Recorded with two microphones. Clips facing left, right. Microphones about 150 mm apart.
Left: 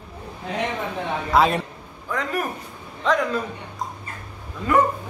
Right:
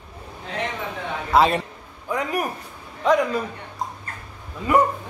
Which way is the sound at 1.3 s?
Centre (ahead or behind).